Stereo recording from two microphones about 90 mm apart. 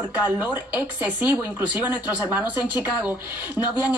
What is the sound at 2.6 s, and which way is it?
Speech, 55° left (ahead or behind).